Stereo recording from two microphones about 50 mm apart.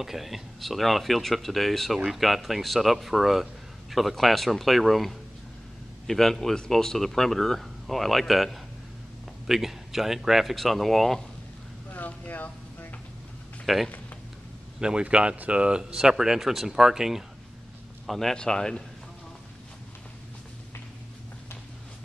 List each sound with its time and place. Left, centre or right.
0.0 s speech: centre
11.9 s a sound: left
13.7 s speech: centre
14.8 s speech: centre
18.0 s a man's voice: centre